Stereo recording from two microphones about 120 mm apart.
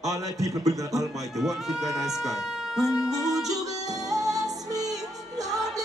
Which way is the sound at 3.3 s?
30° right (ahead or behind).